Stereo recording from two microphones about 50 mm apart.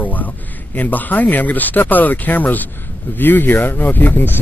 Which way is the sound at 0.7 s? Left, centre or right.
Left.